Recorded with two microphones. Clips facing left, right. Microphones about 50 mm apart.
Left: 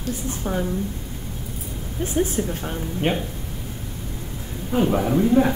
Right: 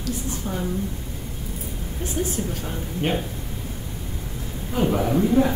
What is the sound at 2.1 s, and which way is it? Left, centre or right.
Speech, left.